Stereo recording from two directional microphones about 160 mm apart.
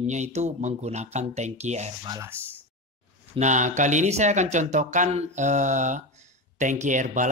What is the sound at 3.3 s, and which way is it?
Speech, 50° right (ahead or behind).